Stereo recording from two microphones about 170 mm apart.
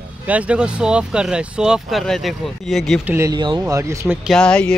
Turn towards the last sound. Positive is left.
turn(degrees=5)  # may be behind; listen again after turning